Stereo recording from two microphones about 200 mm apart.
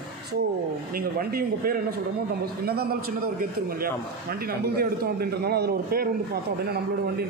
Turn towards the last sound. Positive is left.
turn(degrees=-50)  # may be behind; listen again after turning